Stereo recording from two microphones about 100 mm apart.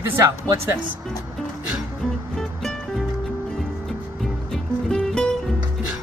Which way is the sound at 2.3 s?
5° left (ahead or behind).